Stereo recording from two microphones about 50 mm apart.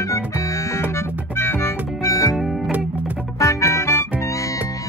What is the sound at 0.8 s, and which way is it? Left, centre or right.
Music, left.